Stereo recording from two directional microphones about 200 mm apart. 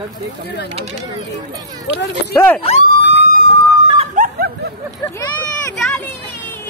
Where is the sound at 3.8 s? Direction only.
30° right (ahead or behind).